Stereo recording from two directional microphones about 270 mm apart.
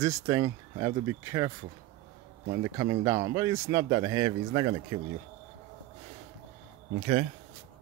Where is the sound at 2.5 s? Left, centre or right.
Centre.